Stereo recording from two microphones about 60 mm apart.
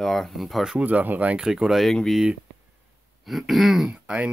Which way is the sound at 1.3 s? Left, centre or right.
Centre.